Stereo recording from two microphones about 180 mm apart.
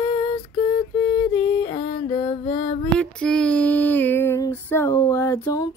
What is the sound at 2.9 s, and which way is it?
Female singing, 5° left (ahead or behind).